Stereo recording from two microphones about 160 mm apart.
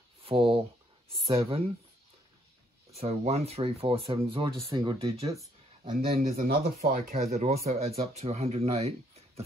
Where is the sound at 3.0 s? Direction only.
40° right (ahead or behind).